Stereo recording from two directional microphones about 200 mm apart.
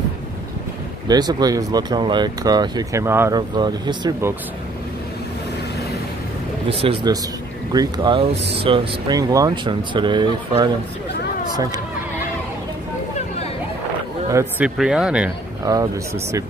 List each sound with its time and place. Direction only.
1.0 s speech: 20° right (ahead or behind)
6.7 s speech: 30° right (ahead or behind)
14.3 s speech: 5° right (ahead or behind)
15.6 s speech: 15° right (ahead or behind)